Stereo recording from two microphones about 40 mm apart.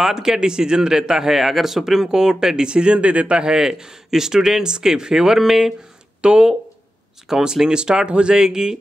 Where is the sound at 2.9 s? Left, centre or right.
Right.